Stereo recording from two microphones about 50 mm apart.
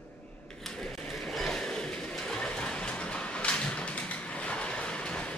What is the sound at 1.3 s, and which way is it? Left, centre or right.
Vehicle, centre.